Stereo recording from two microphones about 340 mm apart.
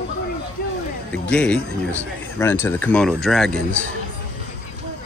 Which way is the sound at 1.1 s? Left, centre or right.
Centre.